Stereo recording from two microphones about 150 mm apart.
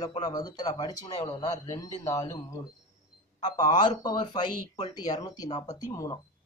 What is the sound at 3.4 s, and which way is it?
Speech, 30° left (ahead or behind).